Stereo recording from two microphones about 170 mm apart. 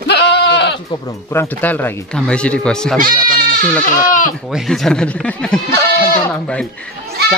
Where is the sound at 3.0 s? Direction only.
55° right (ahead or behind).